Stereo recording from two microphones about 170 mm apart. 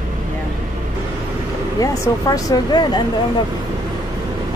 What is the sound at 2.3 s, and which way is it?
Speech, 25° left (ahead or behind).